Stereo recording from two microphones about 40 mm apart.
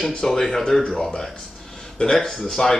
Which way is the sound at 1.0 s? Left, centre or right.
Left.